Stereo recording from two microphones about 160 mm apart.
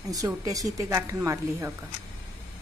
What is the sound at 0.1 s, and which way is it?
A woman's voice, 20° right (ahead or behind).